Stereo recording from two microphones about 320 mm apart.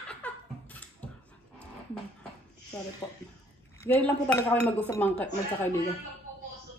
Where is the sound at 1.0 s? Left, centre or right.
Centre.